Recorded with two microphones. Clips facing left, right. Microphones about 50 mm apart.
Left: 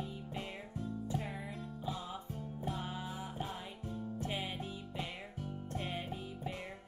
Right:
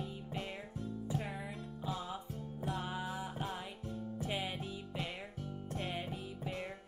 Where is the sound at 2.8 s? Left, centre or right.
Centre.